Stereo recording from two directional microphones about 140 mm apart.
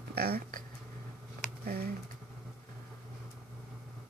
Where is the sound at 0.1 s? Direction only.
90° right.